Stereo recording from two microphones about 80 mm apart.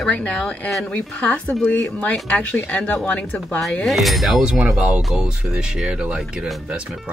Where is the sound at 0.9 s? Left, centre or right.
Centre.